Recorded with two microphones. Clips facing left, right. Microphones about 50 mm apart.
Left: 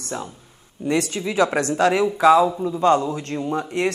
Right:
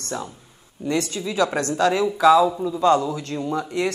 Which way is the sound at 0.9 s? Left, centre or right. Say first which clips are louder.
Left 2 dB; left.